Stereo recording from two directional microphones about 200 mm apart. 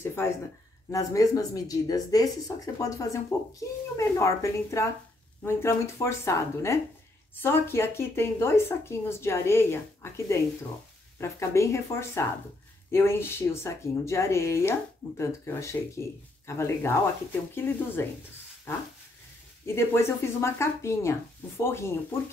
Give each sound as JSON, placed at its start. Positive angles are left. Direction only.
{"t": 0.0, "sound": "speech", "side_deg": 10}
{"t": 19.6, "sound": "speech", "side_deg": 15}